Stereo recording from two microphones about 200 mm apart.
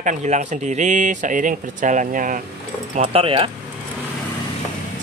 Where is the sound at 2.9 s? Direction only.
30° right (ahead or behind).